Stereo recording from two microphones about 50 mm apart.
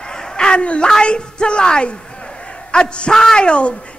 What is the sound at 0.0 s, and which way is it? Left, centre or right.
A man's voice, centre.